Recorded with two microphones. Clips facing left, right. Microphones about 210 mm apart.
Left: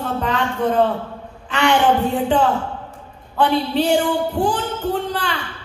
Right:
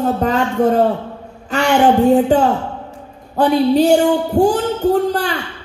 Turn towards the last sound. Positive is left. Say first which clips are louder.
# right 7 dB
turn(degrees=-40)  # may be behind; listen again after turning